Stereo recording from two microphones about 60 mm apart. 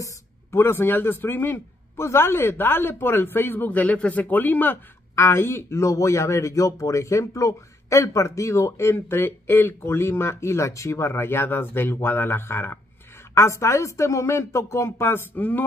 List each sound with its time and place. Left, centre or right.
0.5 s a man's voice: left
5.1 s speech: left
8.9 s speech: left
13.3 s speech: left